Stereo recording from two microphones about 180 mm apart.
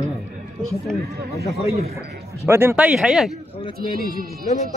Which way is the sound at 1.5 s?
35° right (ahead or behind).